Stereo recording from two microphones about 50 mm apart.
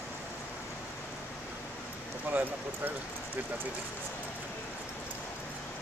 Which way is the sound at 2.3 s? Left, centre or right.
Right.